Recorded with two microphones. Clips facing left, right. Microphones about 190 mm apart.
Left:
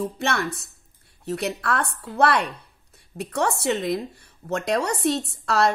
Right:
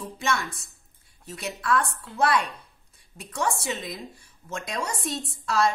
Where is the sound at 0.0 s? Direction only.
60° left (ahead or behind).